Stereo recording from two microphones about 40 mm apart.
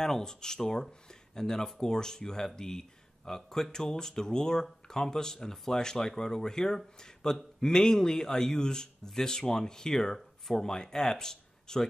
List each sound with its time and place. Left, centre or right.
0.0 s speech: centre